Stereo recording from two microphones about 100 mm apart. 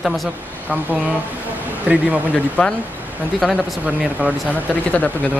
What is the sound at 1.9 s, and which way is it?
Speech, 15° right (ahead or behind).